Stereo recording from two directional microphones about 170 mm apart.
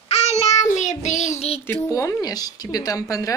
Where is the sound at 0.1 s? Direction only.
40° left (ahead or behind).